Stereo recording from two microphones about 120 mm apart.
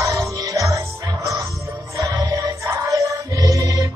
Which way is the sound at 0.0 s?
25° right (ahead or behind).